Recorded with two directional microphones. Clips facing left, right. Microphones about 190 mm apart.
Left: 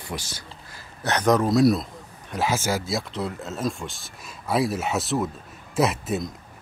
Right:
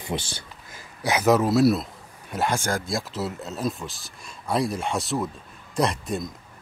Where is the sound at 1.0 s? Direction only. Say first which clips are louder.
Right 1 dB; 5° right (ahead or behind).